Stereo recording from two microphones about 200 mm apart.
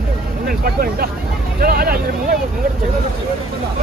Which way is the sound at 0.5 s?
50° right (ahead or behind).